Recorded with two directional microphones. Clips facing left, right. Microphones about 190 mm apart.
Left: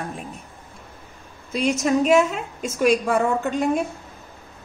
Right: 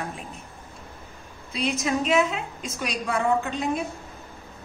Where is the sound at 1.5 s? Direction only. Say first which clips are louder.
Left 6 dB; 45° left (ahead or behind).